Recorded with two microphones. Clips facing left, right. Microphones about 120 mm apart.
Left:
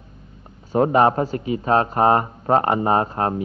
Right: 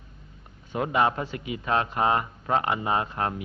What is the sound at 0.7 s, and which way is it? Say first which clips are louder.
Speech: left 8 dB; 40° left (ahead or behind).